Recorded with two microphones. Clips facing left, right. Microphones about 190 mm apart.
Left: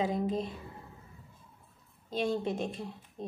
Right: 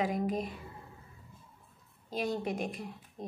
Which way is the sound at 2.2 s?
25° left (ahead or behind).